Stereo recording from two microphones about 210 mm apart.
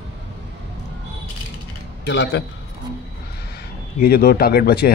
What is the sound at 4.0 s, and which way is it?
Speech, 45° left (ahead or behind).